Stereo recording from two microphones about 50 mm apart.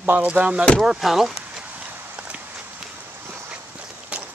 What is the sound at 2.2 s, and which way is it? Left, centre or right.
Horse, right.